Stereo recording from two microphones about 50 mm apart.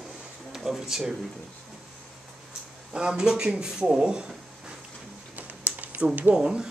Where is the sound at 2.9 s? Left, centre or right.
Centre.